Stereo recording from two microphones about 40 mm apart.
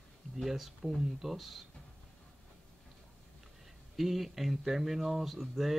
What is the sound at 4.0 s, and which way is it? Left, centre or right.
Speech, centre.